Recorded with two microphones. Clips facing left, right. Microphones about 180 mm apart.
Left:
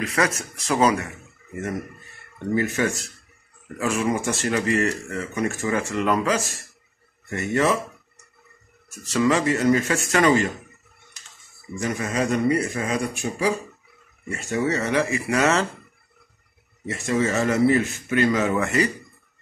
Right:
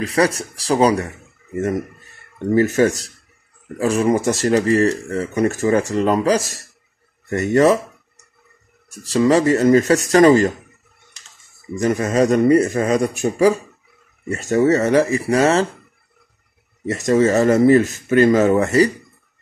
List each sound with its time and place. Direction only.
0.0 s speech: 35° right (ahead or behind)
2.3 s speech: 40° right (ahead or behind)
8.9 s speech: 35° right (ahead or behind)
11.8 s speech: 45° right (ahead or behind)
16.8 s speech: 40° right (ahead or behind)